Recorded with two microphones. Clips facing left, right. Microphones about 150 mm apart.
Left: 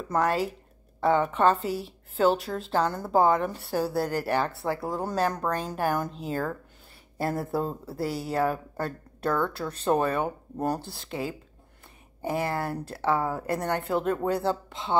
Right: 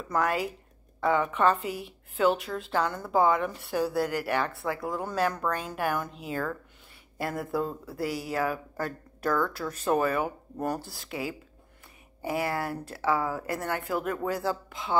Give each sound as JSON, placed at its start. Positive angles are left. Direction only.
{"t": 0.1, "sound": "a woman's voice", "side_deg": 30}
{"t": 12.3, "sound": "speech", "side_deg": 25}